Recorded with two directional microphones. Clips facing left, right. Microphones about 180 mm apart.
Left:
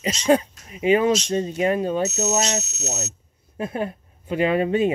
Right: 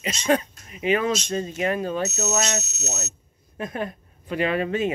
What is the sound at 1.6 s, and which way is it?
Speech, 25° left (ahead or behind).